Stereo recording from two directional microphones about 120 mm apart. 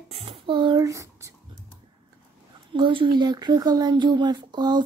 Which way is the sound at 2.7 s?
45° right (ahead or behind).